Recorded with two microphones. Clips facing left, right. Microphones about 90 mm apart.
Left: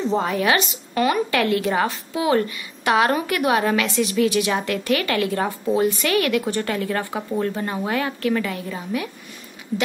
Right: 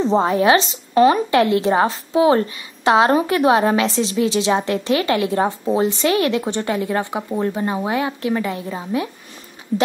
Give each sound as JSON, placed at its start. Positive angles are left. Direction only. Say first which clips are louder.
{"t": 0.0, "sound": "a woman's voice", "louder": "right 5 dB", "side_deg": -30}